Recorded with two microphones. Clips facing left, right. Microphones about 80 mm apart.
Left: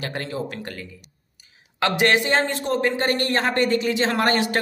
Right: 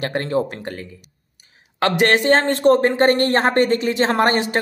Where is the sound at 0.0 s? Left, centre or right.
Right.